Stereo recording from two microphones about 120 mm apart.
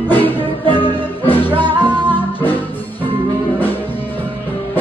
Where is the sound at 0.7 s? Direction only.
45° left (ahead or behind).